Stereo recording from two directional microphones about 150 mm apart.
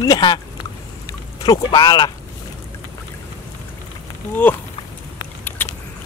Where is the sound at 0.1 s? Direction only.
30° left (ahead or behind).